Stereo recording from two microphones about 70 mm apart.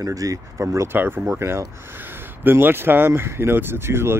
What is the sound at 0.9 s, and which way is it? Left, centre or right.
Speech, right.